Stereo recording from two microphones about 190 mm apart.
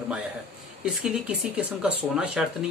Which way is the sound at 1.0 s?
5° right (ahead or behind).